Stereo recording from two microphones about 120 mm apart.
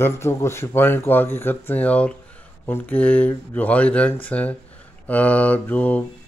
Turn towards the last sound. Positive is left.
turn(degrees=15)  # may be behind; listen again after turning